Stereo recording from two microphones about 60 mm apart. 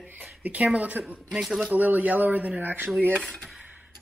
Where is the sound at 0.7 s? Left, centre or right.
Right.